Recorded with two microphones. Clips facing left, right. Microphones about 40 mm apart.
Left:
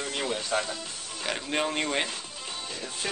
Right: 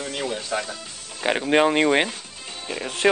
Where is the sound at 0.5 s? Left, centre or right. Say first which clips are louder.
Right 1 dB; centre.